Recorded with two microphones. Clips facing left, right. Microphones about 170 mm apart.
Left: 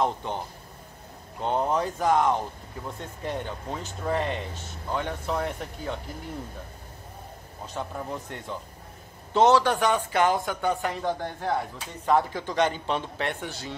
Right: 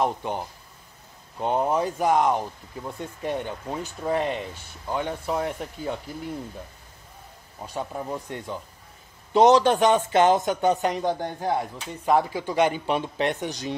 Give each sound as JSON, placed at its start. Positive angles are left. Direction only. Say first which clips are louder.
{"t": 0.0, "sound": "speech", "louder": "right 2 dB", "side_deg": -15}
{"t": 1.4, "sound": "speech", "louder": "right 2 dB", "side_deg": -15}
{"t": 7.6, "sound": "a man's voice", "louder": "right 3 dB", "side_deg": -10}